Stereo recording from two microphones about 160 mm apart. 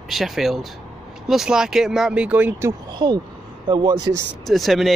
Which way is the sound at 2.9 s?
30° right (ahead or behind).